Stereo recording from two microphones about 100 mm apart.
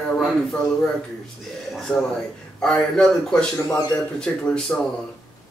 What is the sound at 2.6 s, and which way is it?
Speech, 5° left (ahead or behind).